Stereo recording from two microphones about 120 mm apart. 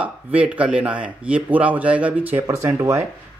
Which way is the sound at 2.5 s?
25° right (ahead or behind).